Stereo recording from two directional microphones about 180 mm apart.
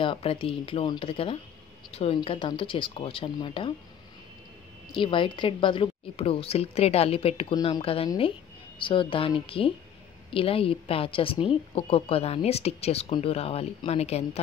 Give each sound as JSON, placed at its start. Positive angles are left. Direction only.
{"t": 0.0, "sound": "a woman's voice", "side_deg": 30}
{"t": 4.9, "sound": "a woman's voice", "side_deg": 30}